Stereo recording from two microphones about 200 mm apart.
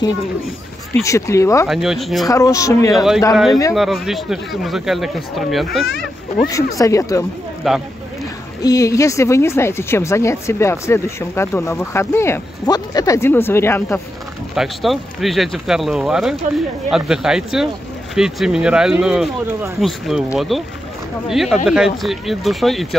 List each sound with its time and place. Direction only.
1.0 s a woman's voice: 15° left (ahead or behind)
1.7 s speech: centre (ahead or behind)
2.2 s a woman's voice: 15° left (ahead or behind)
2.9 s speech: centre (ahead or behind)
6.4 s a woman's voice: 15° left (ahead or behind)
7.7 s speech: centre (ahead or behind)
8.6 s a woman's voice: 15° left (ahead or behind)
14.5 s speech: centre (ahead or behind)